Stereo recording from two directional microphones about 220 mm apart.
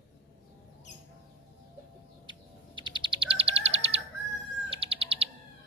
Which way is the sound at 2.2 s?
20° right (ahead or behind).